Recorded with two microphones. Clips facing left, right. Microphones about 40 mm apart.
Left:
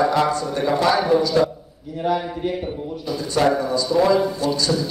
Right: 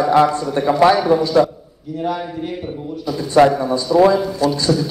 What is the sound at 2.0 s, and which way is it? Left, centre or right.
Speech, centre.